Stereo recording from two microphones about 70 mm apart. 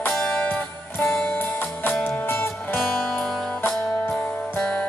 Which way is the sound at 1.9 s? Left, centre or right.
Left.